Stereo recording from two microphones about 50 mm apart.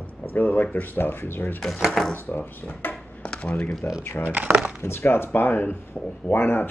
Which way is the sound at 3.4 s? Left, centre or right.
Left.